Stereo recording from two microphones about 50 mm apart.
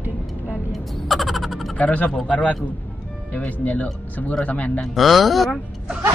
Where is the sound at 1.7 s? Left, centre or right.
Left.